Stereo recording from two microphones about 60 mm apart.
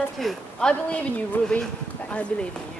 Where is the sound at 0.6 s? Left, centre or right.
Centre.